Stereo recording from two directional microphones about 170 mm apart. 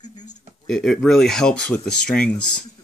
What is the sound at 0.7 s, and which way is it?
Speech, 5° left (ahead or behind).